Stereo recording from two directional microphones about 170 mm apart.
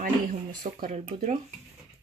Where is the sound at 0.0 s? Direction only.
55° right (ahead or behind).